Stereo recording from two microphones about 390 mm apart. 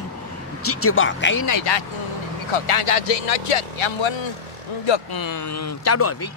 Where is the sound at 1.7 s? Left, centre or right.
Left.